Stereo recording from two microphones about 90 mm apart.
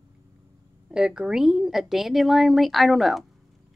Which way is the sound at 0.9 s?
10° right (ahead or behind).